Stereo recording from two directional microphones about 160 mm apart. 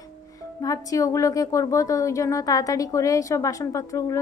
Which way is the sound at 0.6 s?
20° left (ahead or behind).